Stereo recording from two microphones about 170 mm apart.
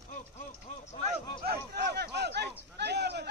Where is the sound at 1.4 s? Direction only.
70° right (ahead or behind).